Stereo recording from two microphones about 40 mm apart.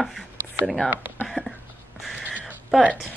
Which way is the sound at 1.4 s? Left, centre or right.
Right.